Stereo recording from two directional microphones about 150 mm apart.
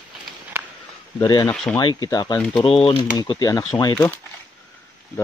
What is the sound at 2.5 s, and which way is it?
Speech, 35° left (ahead or behind).